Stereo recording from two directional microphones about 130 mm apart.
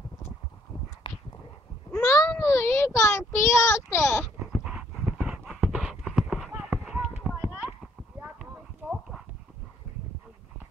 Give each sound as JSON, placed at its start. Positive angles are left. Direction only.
{"t": 2.0, "sound": "child singing", "side_deg": 25}
{"t": 4.5, "sound": "clip-clop", "side_deg": -10}
{"t": 6.5, "sound": "run", "side_deg": -15}
{"t": 7.2, "sound": "clip-clop", "side_deg": -10}